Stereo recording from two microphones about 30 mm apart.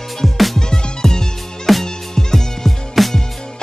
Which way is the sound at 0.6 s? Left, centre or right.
Left.